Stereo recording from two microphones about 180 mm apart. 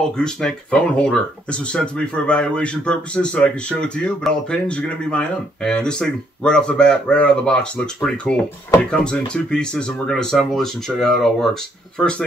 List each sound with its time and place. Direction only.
0.2 s speech: 5° left (ahead or behind)